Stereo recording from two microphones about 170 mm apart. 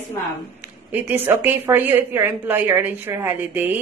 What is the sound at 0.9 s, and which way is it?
A woman's voice, 10° right (ahead or behind).